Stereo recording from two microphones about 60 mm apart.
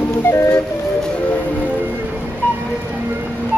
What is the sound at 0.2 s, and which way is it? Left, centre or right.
Music, left.